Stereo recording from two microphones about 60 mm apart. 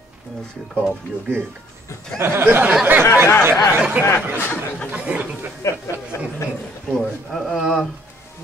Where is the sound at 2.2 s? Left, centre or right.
Right.